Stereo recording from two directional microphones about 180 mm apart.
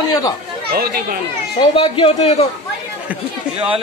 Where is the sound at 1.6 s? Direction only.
30° left (ahead or behind).